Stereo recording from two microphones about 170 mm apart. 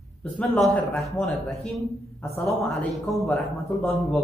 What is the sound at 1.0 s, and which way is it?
Speech, centre (ahead or behind).